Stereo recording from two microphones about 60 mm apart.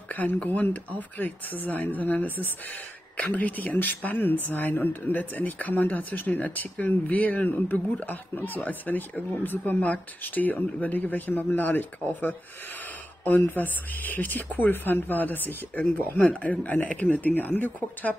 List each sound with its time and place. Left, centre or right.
0.1 s speech: left
13.6 s speech: left